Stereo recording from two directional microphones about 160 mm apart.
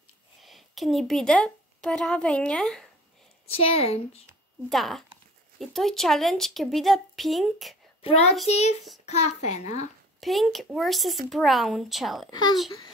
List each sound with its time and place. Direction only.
0.4 s a woman's voice: centre (ahead or behind)
3.4 s a woman's voice: 40° left (ahead or behind)
4.6 s a woman's voice: centre (ahead or behind)
8.0 s a child's voice: 45° left (ahead or behind)
10.2 s a woman's voice: centre (ahead or behind)